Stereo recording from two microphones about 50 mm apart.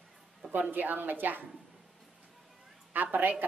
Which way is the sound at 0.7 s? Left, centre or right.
Right.